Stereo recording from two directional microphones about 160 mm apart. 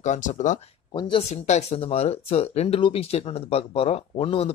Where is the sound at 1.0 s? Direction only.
30° left (ahead or behind).